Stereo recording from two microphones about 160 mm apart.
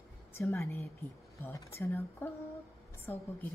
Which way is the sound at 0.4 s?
15° left (ahead or behind).